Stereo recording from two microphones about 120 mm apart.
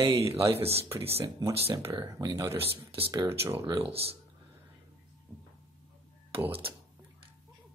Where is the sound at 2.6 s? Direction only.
55° right (ahead or behind).